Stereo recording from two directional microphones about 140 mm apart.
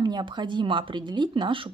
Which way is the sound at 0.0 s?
35° right (ahead or behind).